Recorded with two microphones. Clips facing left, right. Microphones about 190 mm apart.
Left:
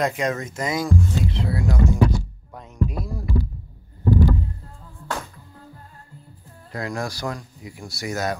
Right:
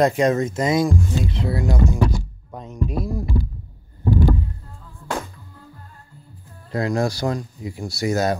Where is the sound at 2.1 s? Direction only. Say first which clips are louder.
Even; 20° right (ahead or behind).